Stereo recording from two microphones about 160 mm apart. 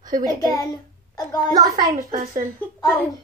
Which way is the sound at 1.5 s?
25° right (ahead or behind).